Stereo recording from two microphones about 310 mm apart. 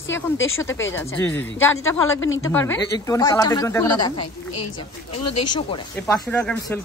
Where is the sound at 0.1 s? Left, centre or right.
Left.